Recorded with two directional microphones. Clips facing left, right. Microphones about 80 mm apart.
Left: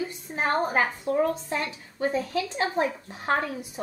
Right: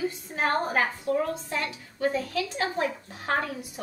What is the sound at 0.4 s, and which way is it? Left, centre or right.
A woman's voice, centre.